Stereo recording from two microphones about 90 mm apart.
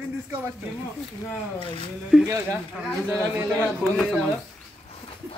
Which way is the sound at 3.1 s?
25° right (ahead or behind).